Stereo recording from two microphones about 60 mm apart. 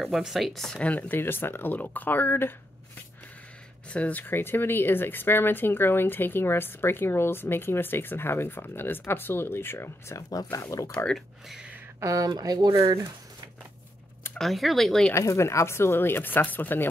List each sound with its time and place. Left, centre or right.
0.0 s speech: centre
0.7 s speech: left
1.2 s speech: left
3.9 s speech: left
10.1 s speech: left
11.1 s speech: centre
12.0 s speech: right
14.4 s speech: centre
15.1 s speech: left